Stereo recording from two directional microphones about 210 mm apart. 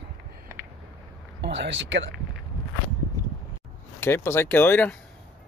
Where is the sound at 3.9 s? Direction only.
10° left (ahead or behind).